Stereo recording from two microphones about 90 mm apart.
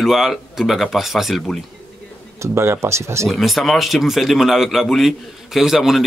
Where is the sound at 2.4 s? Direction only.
30° right (ahead or behind).